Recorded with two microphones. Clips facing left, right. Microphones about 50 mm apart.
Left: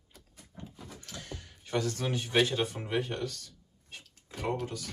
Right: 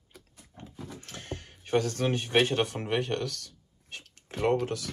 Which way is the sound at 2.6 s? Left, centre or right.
Right.